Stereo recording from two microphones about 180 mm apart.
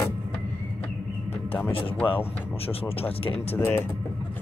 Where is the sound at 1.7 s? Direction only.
30° left (ahead or behind).